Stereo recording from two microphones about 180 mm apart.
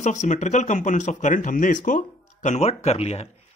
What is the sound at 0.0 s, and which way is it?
Speech, 40° left (ahead or behind).